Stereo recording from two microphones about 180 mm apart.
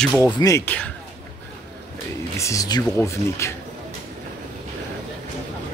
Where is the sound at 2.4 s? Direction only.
15° left (ahead or behind).